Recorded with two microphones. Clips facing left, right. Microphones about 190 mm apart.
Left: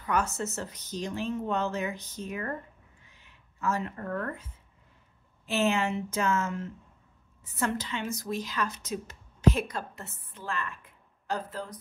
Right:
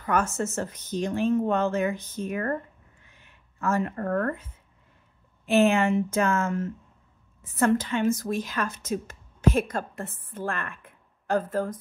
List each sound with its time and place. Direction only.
0.0 s speech: 50° right (ahead or behind)
3.1 s a sound: 50° right (ahead or behind)
5.5 s speech: 55° right (ahead or behind)